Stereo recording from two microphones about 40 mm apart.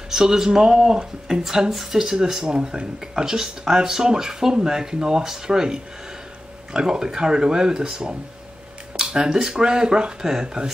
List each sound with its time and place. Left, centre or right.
0.1 s speech: centre